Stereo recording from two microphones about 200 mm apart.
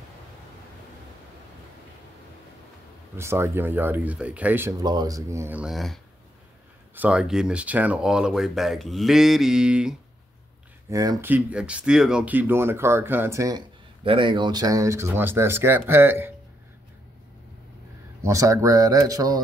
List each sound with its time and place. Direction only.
3.2 s speech: 15° right (ahead or behind)
7.0 s speech: 5° right (ahead or behind)
10.9 s speech: 15° right (ahead or behind)
18.2 s speech: 15° right (ahead or behind)